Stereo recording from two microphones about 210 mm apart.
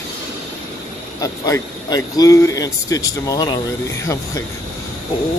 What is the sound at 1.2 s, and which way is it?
Speech, 15° left (ahead or behind).